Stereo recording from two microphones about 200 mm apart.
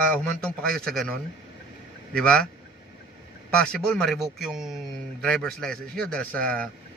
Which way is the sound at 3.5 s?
5° left (ahead or behind).